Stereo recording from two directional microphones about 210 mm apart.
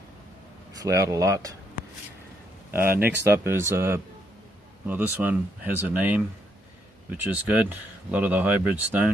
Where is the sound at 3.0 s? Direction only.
10° right (ahead or behind).